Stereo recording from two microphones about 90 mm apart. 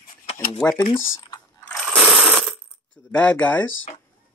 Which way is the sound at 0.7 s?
50° left (ahead or behind).